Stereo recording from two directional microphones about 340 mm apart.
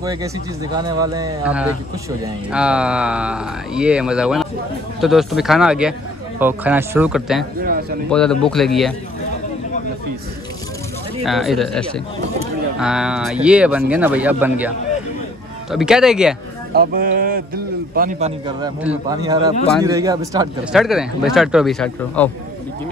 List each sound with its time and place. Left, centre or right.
0.0 s speech: centre
7.6 s a sound: right
8.1 s speech: centre
11.2 s speech: centre
15.7 s speech: centre
16.7 s speech: right
18.6 s speech: centre